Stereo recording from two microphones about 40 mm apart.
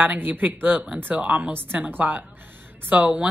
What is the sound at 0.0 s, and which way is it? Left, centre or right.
Speech, right.